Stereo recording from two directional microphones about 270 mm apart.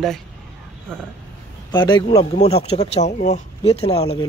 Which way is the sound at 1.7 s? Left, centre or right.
Centre.